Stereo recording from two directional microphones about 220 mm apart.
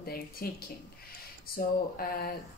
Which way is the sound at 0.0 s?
45° left (ahead or behind).